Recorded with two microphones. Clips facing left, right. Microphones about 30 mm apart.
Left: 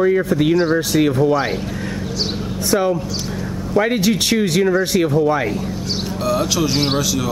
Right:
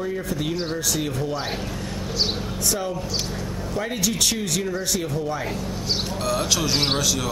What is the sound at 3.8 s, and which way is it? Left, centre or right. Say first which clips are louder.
Speech: left 8 dB; left.